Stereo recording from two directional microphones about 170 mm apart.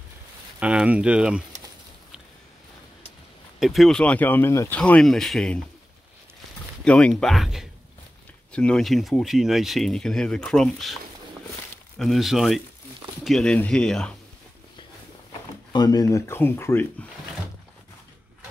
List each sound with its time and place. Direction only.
0.6 s speech: 5° right (ahead or behind)
3.5 s speech: centre (ahead or behind)
6.8 s speech: 5° left (ahead or behind)
12.0 s speech: centre (ahead or behind)
15.7 s speech: 25° left (ahead or behind)